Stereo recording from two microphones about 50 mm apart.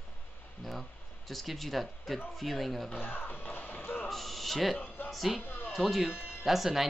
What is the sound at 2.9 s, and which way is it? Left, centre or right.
Music, left.